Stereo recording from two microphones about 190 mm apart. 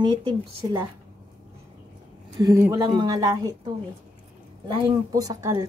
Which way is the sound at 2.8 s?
20° right (ahead or behind).